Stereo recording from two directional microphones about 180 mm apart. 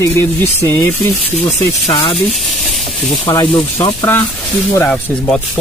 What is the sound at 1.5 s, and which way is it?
Speech, 30° left (ahead or behind).